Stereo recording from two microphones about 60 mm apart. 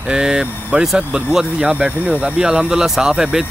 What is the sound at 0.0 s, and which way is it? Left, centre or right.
Speech, centre.